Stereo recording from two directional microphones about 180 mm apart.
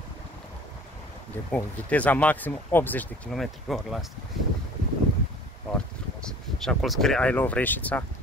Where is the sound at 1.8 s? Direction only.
10° left (ahead or behind).